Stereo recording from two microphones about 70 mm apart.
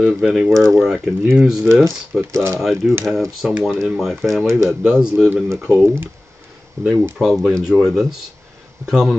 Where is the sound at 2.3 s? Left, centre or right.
Right.